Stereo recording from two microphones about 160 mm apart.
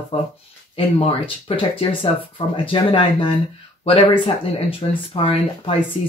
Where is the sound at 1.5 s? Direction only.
35° left (ahead or behind).